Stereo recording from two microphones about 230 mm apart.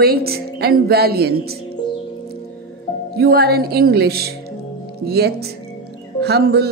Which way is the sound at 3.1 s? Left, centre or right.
Right.